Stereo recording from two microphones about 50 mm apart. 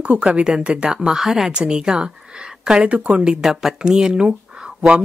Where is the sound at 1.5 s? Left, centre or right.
Centre.